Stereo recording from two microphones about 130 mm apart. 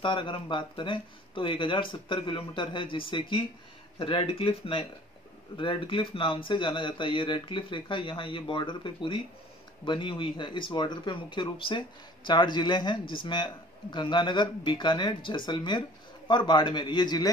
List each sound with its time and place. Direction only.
0.0 s speech: 40° left (ahead or behind)